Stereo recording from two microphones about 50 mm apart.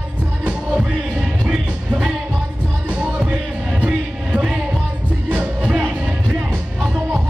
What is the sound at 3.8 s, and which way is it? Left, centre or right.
Music, right.